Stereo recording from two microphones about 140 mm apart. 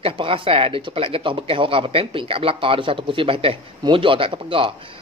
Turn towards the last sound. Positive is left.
turn(degrees=-40)  # may be behind; listen again after turning